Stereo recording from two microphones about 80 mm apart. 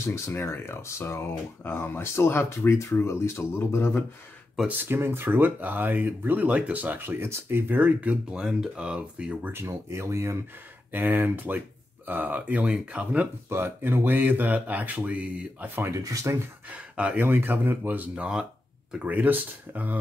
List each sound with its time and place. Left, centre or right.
0.0 s speech: left
4.6 s speech: right
9.5 s speech: right
10.9 s speech: right
13.5 s speech: right
15.9 s speech: right
16.7 s speech: centre
19.0 s speech: right